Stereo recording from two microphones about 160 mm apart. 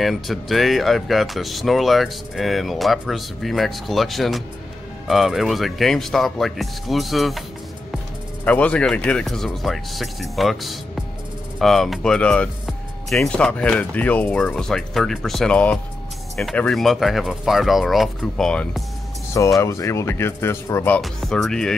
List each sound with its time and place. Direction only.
0.0 s speech: centre (ahead or behind)
8.5 s speech: 10° left (ahead or behind)
19.6 s speech: 20° left (ahead or behind)
21.0 s speech: centre (ahead or behind)